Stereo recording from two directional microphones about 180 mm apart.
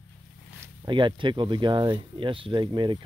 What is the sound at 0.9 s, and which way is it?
Speech, 25° right (ahead or behind).